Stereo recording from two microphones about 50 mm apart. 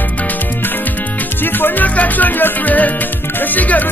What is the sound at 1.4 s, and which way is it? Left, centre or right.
Music, left.